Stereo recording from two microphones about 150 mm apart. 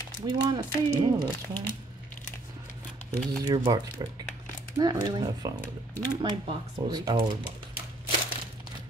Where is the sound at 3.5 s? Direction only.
25° right (ahead or behind).